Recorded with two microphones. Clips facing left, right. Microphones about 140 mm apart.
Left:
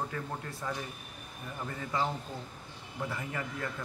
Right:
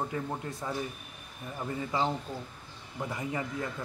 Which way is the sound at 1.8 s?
20° right (ahead or behind).